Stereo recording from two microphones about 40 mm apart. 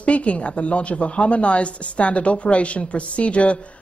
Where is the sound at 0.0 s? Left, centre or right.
Left.